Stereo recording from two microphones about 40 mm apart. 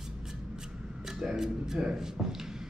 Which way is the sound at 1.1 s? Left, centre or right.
Centre.